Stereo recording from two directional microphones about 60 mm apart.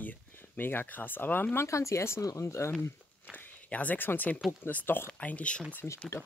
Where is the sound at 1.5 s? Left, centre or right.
Left.